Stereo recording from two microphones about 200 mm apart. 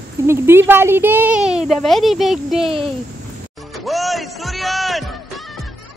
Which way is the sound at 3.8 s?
Centre (ahead or behind).